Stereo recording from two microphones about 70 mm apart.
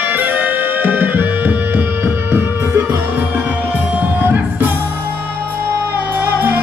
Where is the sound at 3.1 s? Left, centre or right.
Right.